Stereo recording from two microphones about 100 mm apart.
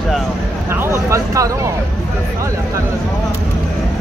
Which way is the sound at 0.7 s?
25° right (ahead or behind).